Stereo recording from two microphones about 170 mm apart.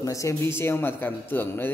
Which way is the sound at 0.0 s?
20° left (ahead or behind).